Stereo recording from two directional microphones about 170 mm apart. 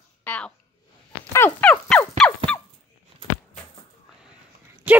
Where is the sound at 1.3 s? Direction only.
10° left (ahead or behind).